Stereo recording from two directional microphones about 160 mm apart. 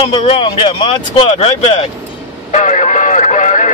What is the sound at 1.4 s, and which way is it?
Speech, 40° left (ahead or behind).